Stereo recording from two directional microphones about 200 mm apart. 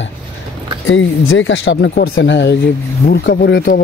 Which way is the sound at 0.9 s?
80° left.